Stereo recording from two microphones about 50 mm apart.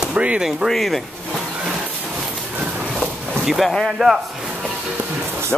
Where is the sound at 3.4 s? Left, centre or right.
Centre.